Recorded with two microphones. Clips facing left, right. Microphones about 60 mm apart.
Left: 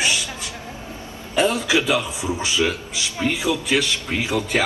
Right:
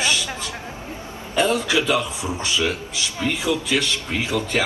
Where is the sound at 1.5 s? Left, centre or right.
Left.